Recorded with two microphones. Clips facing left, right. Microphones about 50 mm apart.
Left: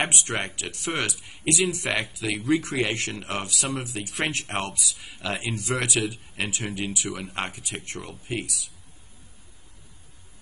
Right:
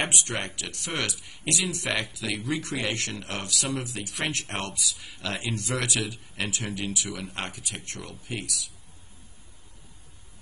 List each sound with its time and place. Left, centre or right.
0.1 s speech: left